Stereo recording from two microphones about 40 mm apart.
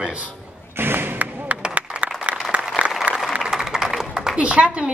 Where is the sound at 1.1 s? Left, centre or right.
Right.